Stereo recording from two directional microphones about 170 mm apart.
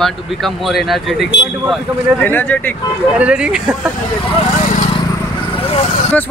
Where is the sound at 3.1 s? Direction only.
5° right (ahead or behind).